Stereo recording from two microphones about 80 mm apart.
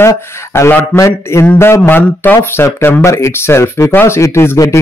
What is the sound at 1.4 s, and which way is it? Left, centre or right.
Speech, left.